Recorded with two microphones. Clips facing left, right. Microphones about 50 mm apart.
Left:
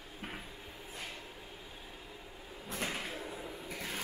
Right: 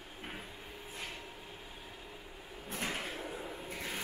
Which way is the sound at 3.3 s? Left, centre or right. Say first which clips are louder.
Right 1 dB; centre.